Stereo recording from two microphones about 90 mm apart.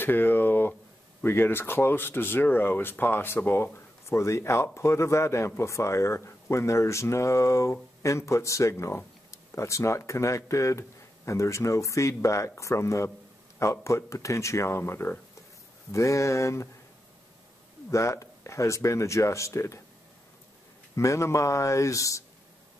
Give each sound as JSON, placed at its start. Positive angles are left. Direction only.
{"t": 0.0, "sound": "speech", "side_deg": 25}
{"t": 17.9, "sound": "speech", "side_deg": 35}
{"t": 20.9, "sound": "speech", "side_deg": 35}